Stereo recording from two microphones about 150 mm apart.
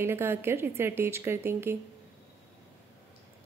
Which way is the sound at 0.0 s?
15° right (ahead or behind).